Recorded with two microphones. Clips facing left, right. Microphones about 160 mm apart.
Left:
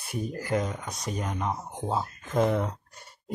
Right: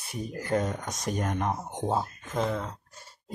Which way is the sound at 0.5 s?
40° right (ahead or behind).